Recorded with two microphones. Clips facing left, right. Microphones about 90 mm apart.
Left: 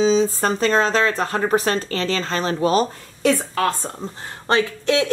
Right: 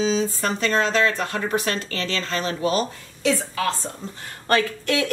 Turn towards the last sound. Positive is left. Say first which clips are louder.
# left 3 dB
turn(degrees=25)  # may be behind; listen again after turning